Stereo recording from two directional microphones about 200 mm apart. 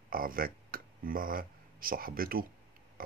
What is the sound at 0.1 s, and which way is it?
Speech, 45° right (ahead or behind).